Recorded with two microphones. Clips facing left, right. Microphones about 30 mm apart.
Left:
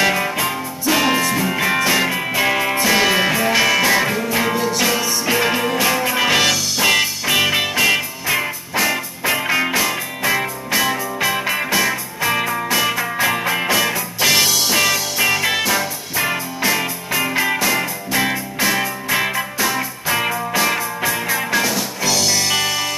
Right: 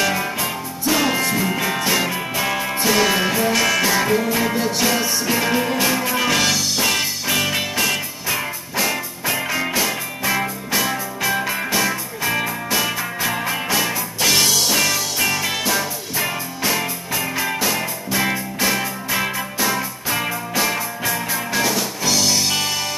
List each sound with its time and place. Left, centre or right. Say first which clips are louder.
0.0 s music: left 3 dB; centre